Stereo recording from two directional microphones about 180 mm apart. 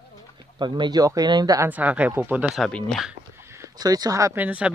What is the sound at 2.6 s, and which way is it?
Speech, 5° left (ahead or behind).